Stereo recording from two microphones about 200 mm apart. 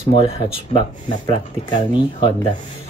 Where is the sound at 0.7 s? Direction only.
25° left (ahead or behind).